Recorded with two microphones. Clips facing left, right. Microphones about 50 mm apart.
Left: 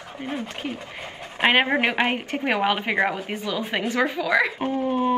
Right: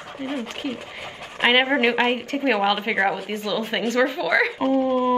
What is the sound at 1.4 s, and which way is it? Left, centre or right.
A woman's voice, centre.